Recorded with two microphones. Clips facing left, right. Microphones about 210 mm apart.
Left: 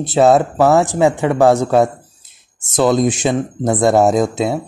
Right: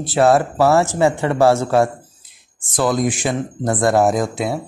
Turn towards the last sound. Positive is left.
turn(degrees=25)  # may be behind; listen again after turning